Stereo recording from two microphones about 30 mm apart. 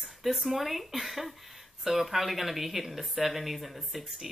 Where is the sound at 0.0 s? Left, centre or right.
Centre.